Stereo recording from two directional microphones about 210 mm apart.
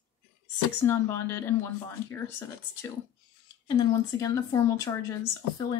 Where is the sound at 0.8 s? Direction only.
15° left (ahead or behind).